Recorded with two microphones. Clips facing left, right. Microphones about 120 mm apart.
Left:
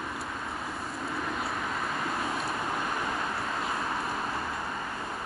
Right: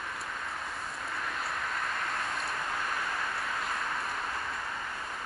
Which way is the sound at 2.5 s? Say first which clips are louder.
Left 3 dB; 20° left (ahead or behind).